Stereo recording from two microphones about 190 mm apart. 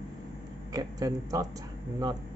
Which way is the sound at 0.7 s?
20° right (ahead or behind).